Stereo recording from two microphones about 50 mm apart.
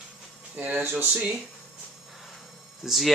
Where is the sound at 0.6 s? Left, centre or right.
Right.